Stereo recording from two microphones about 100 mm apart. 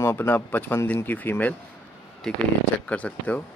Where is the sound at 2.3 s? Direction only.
5° left (ahead or behind).